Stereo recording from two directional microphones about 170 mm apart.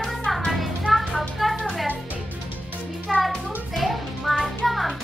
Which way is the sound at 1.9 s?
10° right (ahead or behind).